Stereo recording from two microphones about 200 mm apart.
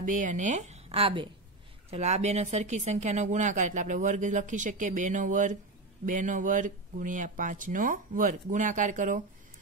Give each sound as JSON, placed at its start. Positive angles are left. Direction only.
{"t": 0.0, "sound": "speech", "side_deg": -40}